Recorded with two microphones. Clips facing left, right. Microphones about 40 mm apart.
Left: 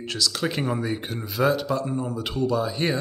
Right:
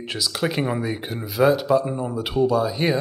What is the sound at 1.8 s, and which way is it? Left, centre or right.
Speech, centre.